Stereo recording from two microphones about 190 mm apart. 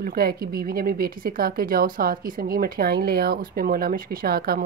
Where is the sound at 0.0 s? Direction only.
55° right (ahead or behind).